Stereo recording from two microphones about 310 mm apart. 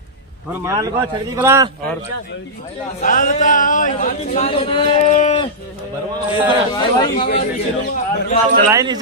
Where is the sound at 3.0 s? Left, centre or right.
Left.